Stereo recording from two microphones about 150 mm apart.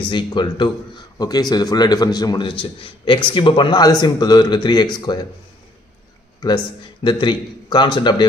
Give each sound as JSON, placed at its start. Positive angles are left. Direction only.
{"t": 0.1, "sound": "speech", "side_deg": 30}
{"t": 6.4, "sound": "speech", "side_deg": 30}